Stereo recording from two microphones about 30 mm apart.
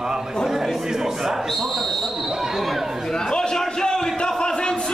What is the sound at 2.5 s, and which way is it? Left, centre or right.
Chatter, centre.